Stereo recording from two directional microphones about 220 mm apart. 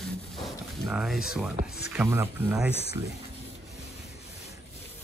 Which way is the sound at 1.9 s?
10° right (ahead or behind).